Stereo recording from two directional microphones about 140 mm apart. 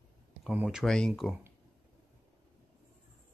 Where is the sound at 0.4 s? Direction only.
5° right (ahead or behind).